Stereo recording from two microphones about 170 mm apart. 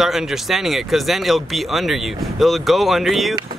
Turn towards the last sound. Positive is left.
turn(degrees=0)  # may be behind; listen again after turning